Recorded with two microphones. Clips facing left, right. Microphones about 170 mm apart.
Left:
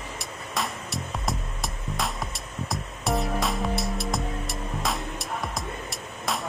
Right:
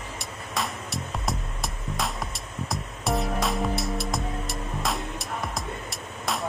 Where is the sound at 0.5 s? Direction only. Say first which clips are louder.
Even; centre (ahead or behind).